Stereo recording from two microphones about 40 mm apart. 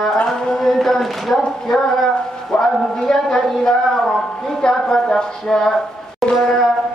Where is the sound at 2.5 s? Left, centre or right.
Centre.